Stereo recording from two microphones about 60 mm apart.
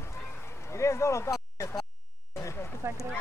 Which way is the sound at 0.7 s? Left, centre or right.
Left.